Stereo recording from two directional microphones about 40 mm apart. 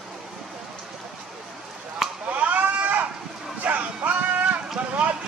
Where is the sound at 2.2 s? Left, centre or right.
Right.